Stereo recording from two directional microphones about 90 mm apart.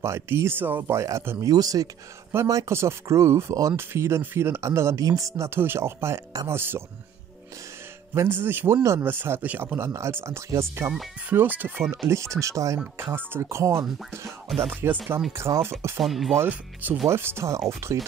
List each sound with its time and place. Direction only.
0.0 s speech: 30° right (ahead or behind)
1.4 s speech: 45° right (ahead or behind)
2.7 s speech: 30° right (ahead or behind)
5.5 s speech: 25° right (ahead or behind)
8.1 s speech: 25° right (ahead or behind)
9.8 s speech: 30° right (ahead or behind)
11.2 s speech: 20° right (ahead or behind)
12.1 s speech: 35° right (ahead or behind)
12.9 s speech: 25° right (ahead or behind)
16.0 s speech: centre (ahead or behind)
16.3 s speech: 20° right (ahead or behind)